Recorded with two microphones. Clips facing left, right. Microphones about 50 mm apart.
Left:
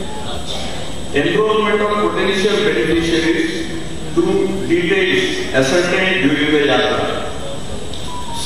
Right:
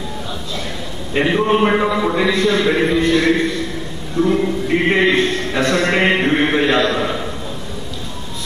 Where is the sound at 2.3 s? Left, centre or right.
Right.